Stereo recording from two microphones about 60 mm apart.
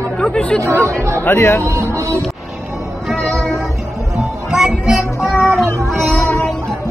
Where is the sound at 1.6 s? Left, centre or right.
Right.